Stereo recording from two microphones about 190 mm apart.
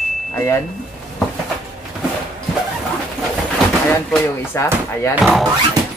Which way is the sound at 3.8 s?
10° left (ahead or behind).